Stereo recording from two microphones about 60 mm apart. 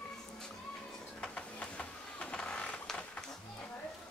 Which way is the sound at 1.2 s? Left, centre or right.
Centre.